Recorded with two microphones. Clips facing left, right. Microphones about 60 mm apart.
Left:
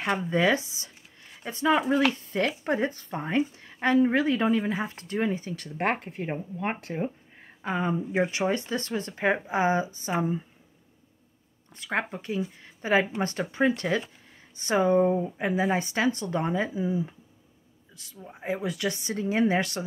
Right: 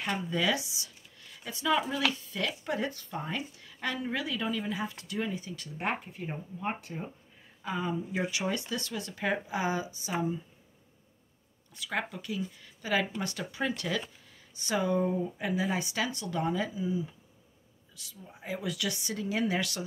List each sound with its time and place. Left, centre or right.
0.0 s a woman's voice: left
7.0 s a woman's voice: left
11.7 s a woman's voice: left